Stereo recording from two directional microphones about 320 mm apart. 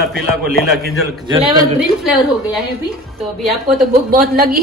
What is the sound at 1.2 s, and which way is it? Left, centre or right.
Speech, centre.